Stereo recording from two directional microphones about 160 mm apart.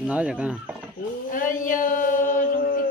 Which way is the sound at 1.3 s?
55° left (ahead or behind).